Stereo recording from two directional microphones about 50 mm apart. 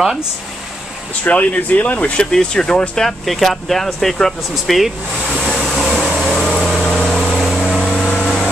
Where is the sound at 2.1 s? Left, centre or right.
Centre.